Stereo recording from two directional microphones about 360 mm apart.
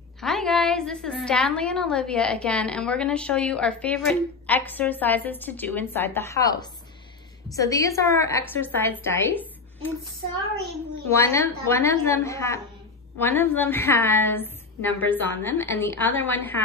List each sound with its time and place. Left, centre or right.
0.2 s a woman's voice: centre
11.1 s a woman's voice: centre